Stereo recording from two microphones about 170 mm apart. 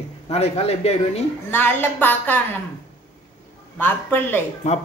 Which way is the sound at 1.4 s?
10° left (ahead or behind).